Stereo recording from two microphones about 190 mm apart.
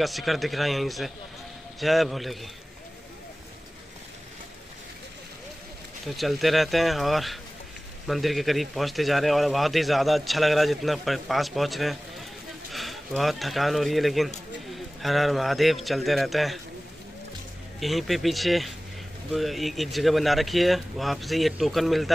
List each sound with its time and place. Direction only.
0.0 s a man's voice: centre (ahead or behind)
6.0 s a man's voice: centre (ahead or behind)
17.7 s a man's voice: centre (ahead or behind)